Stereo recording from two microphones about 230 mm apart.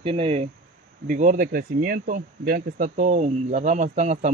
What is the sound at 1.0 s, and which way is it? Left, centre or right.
Speech, right.